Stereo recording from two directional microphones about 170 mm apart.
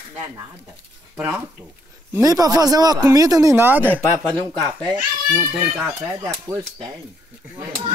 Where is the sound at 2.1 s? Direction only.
20° right (ahead or behind).